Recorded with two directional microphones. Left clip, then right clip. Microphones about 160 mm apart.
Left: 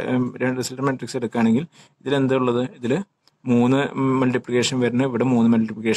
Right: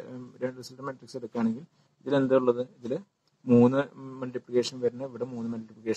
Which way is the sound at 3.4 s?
20° left (ahead or behind).